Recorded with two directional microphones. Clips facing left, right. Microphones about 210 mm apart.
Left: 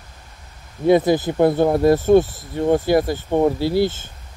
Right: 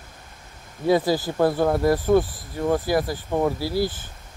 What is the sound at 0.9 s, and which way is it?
Speech, 20° left (ahead or behind).